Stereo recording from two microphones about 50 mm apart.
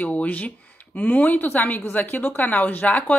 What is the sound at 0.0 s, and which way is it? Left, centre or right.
A woman's voice, left.